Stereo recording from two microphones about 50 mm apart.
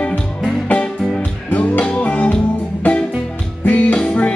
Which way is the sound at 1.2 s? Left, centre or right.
Left.